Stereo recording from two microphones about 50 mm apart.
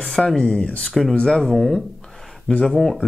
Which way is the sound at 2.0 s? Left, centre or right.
Centre.